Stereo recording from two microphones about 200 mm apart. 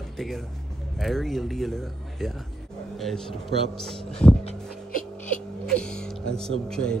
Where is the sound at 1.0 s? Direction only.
Centre (ahead or behind).